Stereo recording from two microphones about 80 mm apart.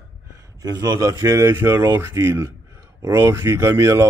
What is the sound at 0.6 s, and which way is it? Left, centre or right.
A man's voice, right.